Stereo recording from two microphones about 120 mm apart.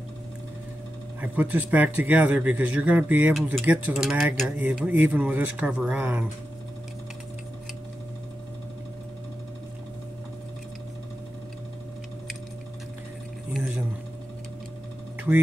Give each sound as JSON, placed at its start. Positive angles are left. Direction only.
{"t": 1.2, "sound": "a man's voice", "side_deg": -15}
{"t": 4.5, "sound": "a man's voice", "side_deg": -15}
{"t": 13.5, "sound": "a sound", "side_deg": -5}